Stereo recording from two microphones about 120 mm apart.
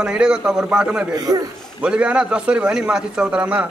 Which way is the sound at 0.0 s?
10° right (ahead or behind).